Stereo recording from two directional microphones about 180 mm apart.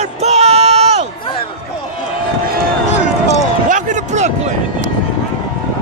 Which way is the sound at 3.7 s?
40° right (ahead or behind).